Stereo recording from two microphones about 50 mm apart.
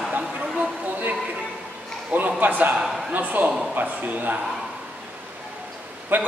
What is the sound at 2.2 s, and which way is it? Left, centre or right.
Speech, right.